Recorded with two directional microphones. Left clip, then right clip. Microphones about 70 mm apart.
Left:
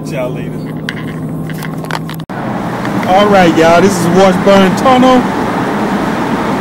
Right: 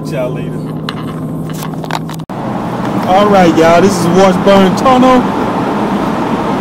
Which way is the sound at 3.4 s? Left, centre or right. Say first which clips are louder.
Even; centre.